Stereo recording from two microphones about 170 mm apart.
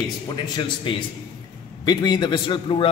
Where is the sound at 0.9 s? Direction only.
30° left (ahead or behind).